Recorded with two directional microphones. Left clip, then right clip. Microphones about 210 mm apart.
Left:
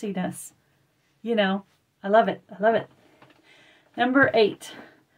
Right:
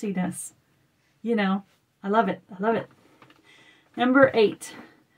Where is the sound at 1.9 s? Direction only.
Centre (ahead or behind).